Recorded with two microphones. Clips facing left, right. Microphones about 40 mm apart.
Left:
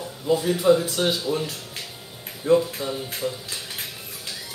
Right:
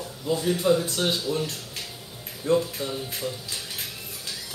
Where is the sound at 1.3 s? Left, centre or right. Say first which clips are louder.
Left 2 dB; left.